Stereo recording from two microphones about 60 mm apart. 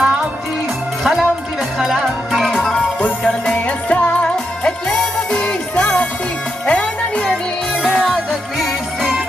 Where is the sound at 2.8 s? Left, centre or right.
Centre.